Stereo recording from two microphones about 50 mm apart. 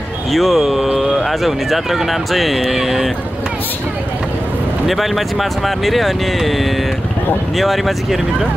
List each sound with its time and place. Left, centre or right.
0.3 s speech: centre
4.8 s speech: centre